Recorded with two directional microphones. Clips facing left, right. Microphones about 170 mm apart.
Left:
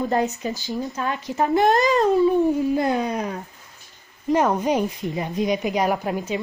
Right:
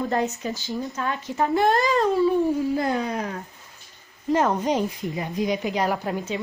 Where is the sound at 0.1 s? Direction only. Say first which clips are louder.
Left 2 dB; 20° left (ahead or behind).